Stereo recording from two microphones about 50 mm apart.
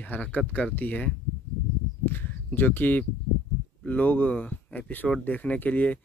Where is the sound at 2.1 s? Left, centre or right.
Left.